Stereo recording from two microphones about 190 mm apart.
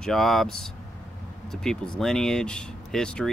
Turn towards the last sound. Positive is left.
turn(degrees=5)  # may be behind; listen again after turning